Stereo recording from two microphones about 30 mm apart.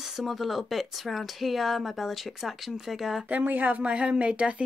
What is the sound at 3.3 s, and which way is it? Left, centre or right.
Speech, right.